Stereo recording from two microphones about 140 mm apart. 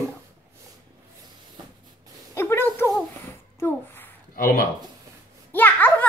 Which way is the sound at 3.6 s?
15° left (ahead or behind).